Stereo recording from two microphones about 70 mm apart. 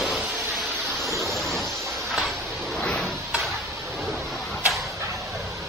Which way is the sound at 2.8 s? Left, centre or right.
Centre.